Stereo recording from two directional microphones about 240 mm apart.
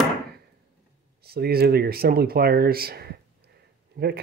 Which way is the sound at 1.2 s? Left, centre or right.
Right.